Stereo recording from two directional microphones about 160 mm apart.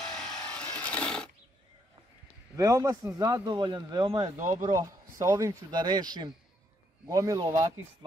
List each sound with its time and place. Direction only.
0.0 s sewing machine: 5° left (ahead or behind)
2.5 s speech: 20° right (ahead or behind)
5.2 s speech: 20° right (ahead or behind)